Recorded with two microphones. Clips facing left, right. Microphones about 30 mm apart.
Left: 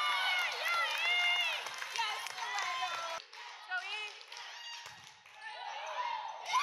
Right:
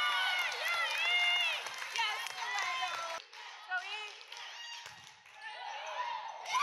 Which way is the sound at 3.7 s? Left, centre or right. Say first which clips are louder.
Right 1 dB; left.